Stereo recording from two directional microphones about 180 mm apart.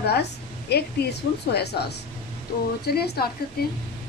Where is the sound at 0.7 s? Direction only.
65° left (ahead or behind).